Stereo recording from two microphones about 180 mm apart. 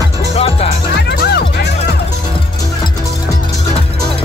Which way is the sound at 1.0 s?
65° left (ahead or behind).